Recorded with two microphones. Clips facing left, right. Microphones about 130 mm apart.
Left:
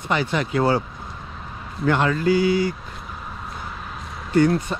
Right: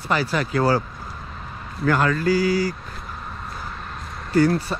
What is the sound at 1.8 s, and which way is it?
Speech, 25° left (ahead or behind).